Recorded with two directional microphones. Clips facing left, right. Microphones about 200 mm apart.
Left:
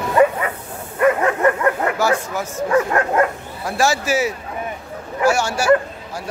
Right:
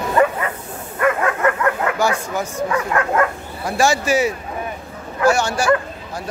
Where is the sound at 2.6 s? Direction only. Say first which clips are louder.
Left 5 dB; 40° left (ahead or behind).